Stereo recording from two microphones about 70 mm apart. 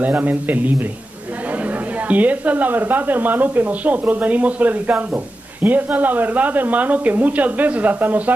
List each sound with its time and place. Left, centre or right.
0.0 s speech: right
2.0 s speech: right